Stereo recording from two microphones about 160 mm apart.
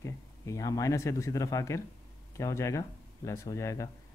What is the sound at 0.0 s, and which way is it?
Speech, 20° left (ahead or behind).